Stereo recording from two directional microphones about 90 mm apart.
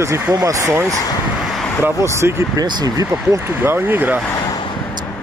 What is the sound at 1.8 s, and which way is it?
Speech, 30° right (ahead or behind).